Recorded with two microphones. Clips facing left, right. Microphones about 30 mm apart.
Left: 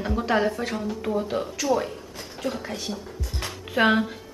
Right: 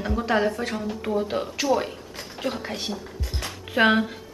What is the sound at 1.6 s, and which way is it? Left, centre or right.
Speech, right.